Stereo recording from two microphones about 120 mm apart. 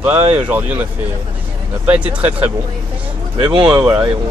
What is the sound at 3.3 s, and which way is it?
Speech, 40° right (ahead or behind).